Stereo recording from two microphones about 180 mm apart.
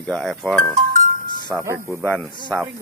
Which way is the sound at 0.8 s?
55° right (ahead or behind).